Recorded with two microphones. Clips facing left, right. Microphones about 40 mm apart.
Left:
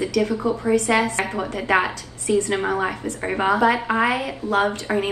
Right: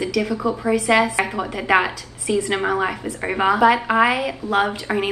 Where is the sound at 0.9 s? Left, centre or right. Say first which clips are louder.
Right 5 dB; right.